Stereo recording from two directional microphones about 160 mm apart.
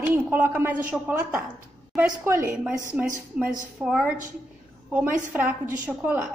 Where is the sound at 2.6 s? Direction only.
5° right (ahead or behind).